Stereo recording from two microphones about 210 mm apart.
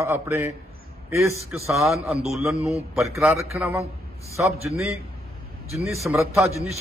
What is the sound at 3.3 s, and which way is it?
Speech, 10° right (ahead or behind).